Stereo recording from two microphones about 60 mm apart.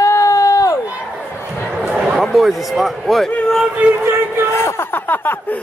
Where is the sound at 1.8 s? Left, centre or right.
Right.